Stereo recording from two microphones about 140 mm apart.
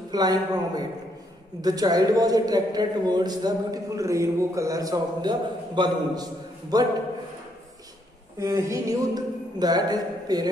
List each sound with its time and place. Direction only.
0.1 s a man's voice: 30° right (ahead or behind)
8.4 s a man's voice: 25° right (ahead or behind)